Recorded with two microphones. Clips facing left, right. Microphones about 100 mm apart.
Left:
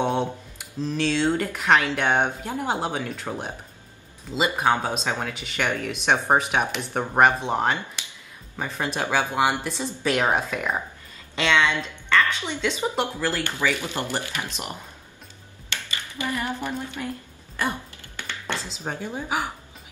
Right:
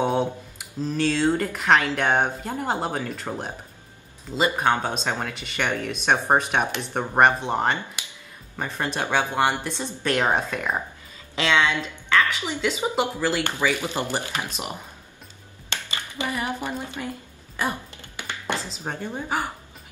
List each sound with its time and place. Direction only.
0.0 s a sound: 5° right (ahead or behind)
1.2 s speech: centre (ahead or behind)
4.6 s a woman's voice: 5° left (ahead or behind)
6.3 s a woman's voice: 5° left (ahead or behind); by 14.5 s 20° right (ahead or behind)
16.2 s a woman's voice: 15° right (ahead or behind)
17.6 s a sound: 10° right (ahead or behind)
18.7 s speech: centre (ahead or behind)